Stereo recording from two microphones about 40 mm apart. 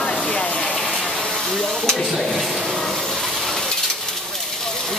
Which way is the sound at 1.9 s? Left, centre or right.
Centre.